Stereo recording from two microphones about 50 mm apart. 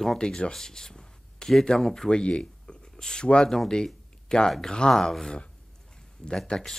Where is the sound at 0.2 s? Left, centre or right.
Centre.